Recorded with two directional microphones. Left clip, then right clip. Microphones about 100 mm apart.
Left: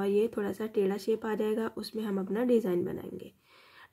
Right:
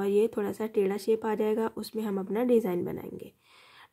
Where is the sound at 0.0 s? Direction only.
35° right (ahead or behind).